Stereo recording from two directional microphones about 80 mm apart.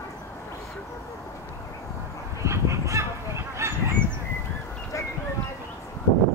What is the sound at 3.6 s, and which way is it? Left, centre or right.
Goose, right.